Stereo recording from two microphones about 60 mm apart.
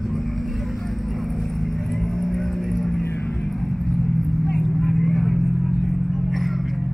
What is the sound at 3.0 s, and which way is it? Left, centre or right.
Vehicle, left.